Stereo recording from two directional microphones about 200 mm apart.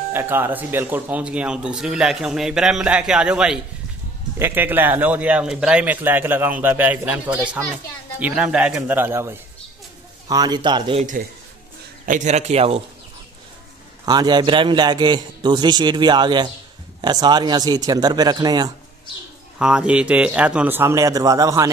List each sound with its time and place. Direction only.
0.1 s a man's voice: 10° right (ahead or behind)
12.1 s a man's voice: 35° right (ahead or behind)
14.0 s a man's voice: 20° right (ahead or behind)
19.6 s speech: 5° right (ahead or behind)